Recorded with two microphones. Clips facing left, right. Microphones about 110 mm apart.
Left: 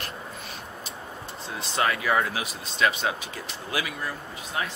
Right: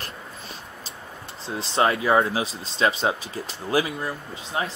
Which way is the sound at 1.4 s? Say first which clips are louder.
Right 5 dB; 30° right (ahead or behind).